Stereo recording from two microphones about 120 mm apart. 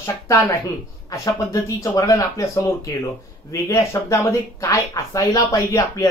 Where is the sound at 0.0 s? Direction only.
25° left (ahead or behind).